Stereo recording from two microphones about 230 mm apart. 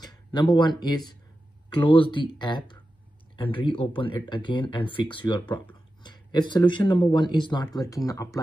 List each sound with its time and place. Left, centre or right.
0.0 s speech: centre